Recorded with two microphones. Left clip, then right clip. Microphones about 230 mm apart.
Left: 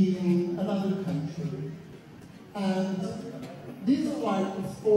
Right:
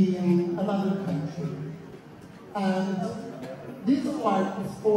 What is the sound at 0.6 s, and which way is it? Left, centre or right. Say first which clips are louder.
Speech: right 2 dB; centre.